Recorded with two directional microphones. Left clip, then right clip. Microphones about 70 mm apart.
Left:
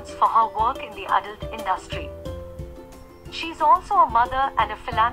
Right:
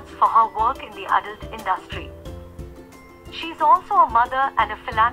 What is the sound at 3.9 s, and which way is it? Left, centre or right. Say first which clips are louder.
Speech: right 1 dB; centre.